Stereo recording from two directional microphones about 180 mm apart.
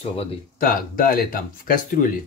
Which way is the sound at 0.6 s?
55° left (ahead or behind).